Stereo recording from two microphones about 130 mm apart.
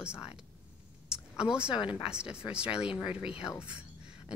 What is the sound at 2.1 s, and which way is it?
Speech, 5° right (ahead or behind).